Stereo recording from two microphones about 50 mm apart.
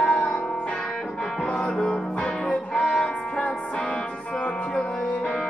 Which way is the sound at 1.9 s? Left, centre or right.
Left.